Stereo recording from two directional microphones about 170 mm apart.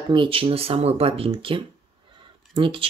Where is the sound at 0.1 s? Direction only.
30° right (ahead or behind).